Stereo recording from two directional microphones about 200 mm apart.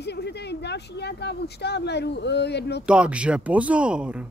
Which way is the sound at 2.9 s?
5° right (ahead or behind).